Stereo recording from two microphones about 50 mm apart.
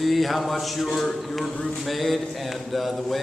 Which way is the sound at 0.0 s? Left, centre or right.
Centre.